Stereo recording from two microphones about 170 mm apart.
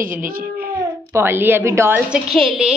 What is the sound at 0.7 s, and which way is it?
A woman's voice, 15° right (ahead or behind).